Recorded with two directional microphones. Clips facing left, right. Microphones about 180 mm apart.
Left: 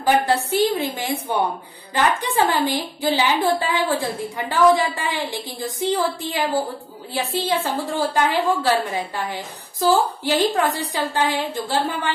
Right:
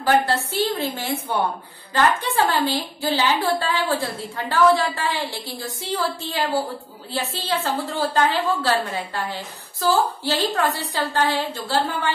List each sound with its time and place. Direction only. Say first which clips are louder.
0.0 s a woman's voice: left 1 dB; 15° left (ahead or behind)